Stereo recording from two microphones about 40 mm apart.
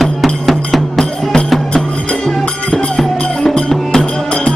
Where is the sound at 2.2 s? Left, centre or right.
Centre.